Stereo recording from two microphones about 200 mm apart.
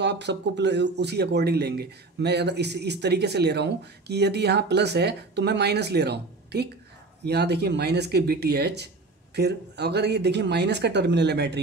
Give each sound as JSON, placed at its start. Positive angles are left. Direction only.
{"t": 0.0, "sound": "speech", "side_deg": -60}